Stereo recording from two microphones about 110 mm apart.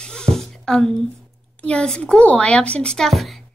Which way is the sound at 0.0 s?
5° left (ahead or behind).